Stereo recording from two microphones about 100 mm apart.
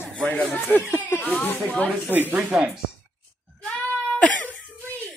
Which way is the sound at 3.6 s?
15° left (ahead or behind).